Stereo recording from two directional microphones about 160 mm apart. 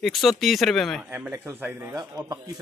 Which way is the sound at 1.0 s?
10° right (ahead or behind).